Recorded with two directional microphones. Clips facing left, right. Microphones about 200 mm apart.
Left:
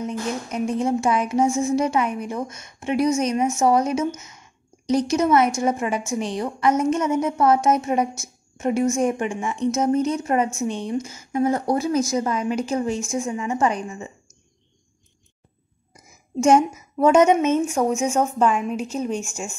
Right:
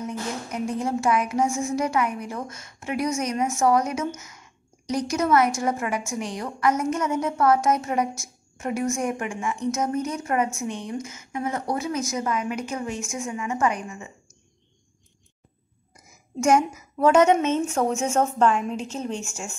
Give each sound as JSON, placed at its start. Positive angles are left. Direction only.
{"t": 0.0, "sound": "a woman's voice", "side_deg": 20}
{"t": 16.3, "sound": "a woman's voice", "side_deg": 25}